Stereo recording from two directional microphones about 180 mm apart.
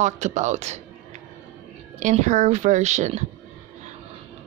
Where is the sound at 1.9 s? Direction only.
40° right (ahead or behind).